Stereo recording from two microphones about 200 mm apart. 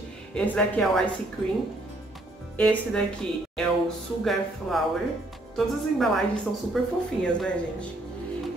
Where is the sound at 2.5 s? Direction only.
5° left (ahead or behind).